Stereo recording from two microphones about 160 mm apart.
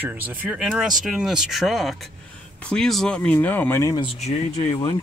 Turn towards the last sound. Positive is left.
turn(degrees=40)  # may be behind; listen again after turning